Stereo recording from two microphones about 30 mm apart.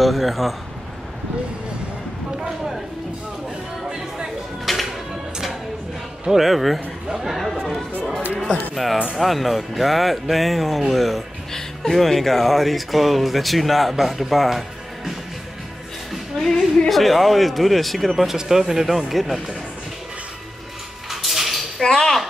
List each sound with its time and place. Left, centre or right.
0.0 s speech: centre
4.7 s music: centre
6.3 s speech: centre
9.1 s speech: centre
11.5 s speech: centre
16.4 s speech: centre
18.3 s speech: centre
18.9 s speech: centre
21.1 s dishes: centre
21.8 s speech: centre